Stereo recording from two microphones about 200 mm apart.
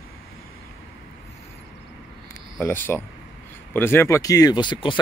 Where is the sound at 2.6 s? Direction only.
10° left (ahead or behind).